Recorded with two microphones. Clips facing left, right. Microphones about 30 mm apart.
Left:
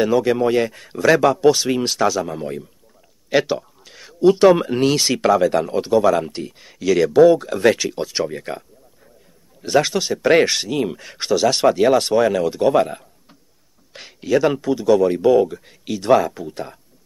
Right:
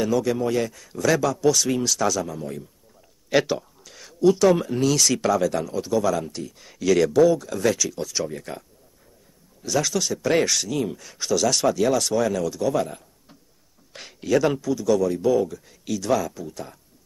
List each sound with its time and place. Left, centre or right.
0.0 s speech: left
3.3 s speech: centre; by 6.5 s left
6.6 s a man's voice: centre
7.1 s speech: left
13.9 s a man's voice: centre
14.6 s speech: left